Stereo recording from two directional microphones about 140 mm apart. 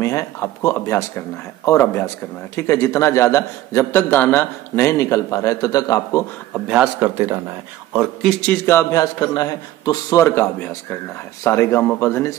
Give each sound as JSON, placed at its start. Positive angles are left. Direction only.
{"t": 0.0, "sound": "speech", "side_deg": 20}
{"t": 6.5, "sound": "a man's voice", "side_deg": -5}
{"t": 7.9, "sound": "a man's voice", "side_deg": 0}
{"t": 8.6, "sound": "speech", "side_deg": 20}